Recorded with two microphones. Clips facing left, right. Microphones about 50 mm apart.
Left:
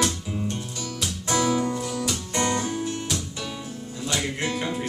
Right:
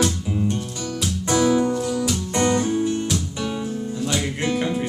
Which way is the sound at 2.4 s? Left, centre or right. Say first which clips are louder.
Right 6 dB; right.